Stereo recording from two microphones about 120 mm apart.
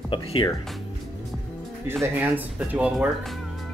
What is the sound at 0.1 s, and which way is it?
Speech, 45° left (ahead or behind).